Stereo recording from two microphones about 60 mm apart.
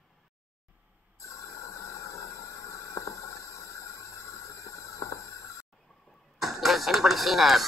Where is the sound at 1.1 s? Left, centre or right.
Left.